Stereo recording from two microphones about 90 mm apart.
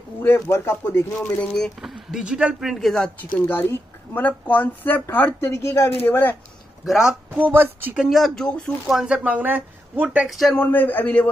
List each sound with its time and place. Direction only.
0.2 s speech: 25° left (ahead or behind)
1.5 s speech: centre (ahead or behind)
3.2 s speech: 20° left (ahead or behind)
5.5 s speech: 30° left (ahead or behind)
6.0 s speech: 20° left (ahead or behind)
6.9 s speech: 5° right (ahead or behind)
7.5 s speech: 25° right (ahead or behind)
7.9 s speech: centre (ahead or behind)
8.8 s speech: 10° right (ahead or behind)
10.5 s speech: 20° left (ahead or behind)